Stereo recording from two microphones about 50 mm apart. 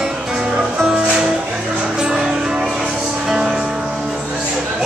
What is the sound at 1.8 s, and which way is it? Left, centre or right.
Music, centre.